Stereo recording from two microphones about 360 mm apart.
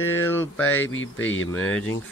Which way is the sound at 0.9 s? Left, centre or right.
Left.